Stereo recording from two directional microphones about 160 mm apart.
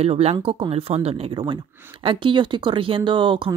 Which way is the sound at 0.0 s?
40° right (ahead or behind).